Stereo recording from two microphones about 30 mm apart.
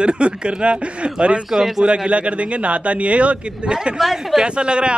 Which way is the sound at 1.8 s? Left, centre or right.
Right.